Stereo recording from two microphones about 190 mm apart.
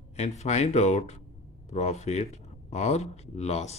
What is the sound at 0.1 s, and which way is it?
Speech, 35° left (ahead or behind).